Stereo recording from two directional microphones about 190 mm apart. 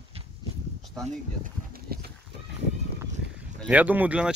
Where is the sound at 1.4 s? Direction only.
50° right (ahead or behind).